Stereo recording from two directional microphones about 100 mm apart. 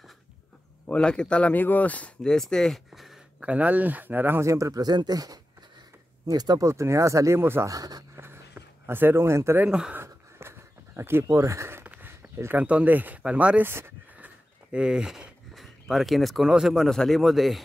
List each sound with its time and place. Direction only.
0.8 s speech: 10° left (ahead or behind)
3.4 s speech: 15° right (ahead or behind); by 6.7 s 40° right (ahead or behind)
6.7 s speech: 30° right (ahead or behind)
7.7 s speech: 35° right (ahead or behind)
8.2 s a sound: 25° right (ahead or behind)
9.7 s speech: 10° right (ahead or behind)
9.9 s a sound: 25° right (ahead or behind)
11.9 s speech: 20° right (ahead or behind); by 17.6 s centre (ahead or behind)